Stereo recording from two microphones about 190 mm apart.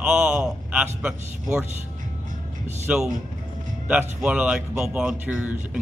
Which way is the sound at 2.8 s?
5° right (ahead or behind).